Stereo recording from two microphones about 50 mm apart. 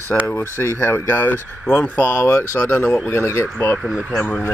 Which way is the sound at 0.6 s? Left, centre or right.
Left.